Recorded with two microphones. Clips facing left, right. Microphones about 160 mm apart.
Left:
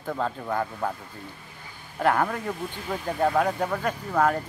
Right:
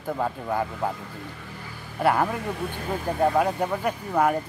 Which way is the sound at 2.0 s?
10° right (ahead or behind).